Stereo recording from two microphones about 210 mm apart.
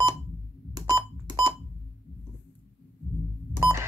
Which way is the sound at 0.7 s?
20° right (ahead or behind).